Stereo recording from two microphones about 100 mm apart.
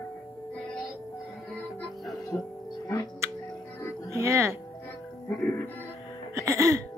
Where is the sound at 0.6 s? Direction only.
10° left (ahead or behind).